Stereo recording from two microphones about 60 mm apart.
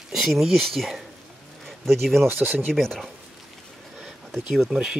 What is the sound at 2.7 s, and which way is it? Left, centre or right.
Speech, centre.